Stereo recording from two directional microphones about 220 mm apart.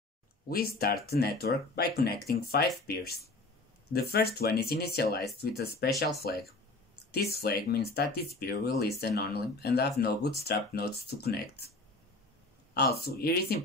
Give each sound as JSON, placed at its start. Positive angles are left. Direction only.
{"t": 0.5, "sound": "speech", "side_deg": 45}
{"t": 3.9, "sound": "speech", "side_deg": 45}
{"t": 12.7, "sound": "speech", "side_deg": 45}